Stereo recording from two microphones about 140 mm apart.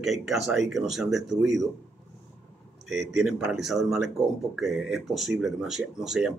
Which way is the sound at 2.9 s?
Centre (ahead or behind).